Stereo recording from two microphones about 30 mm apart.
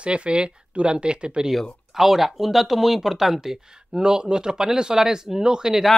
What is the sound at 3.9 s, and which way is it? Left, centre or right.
Speech, right.